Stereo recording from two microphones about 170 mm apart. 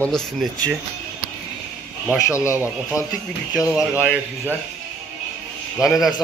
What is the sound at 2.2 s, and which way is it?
Speech, 15° left (ahead or behind).